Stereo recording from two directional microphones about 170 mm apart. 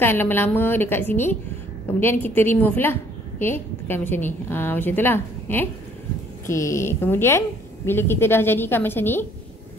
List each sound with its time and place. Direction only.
0.0 s a woman's voice: 15° left (ahead or behind)